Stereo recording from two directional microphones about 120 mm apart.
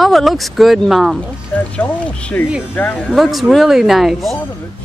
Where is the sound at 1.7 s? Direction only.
10° left (ahead or behind).